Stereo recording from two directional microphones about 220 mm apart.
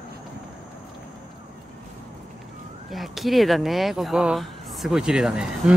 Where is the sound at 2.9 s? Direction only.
Centre (ahead or behind).